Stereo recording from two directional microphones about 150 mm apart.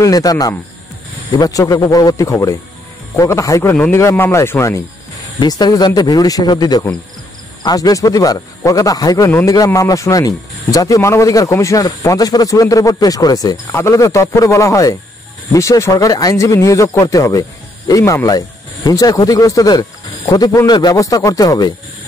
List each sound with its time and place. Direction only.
0.0 s a man's voice: 25° left (ahead or behind)